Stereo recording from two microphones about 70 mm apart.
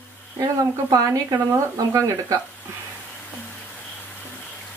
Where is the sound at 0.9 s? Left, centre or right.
Right.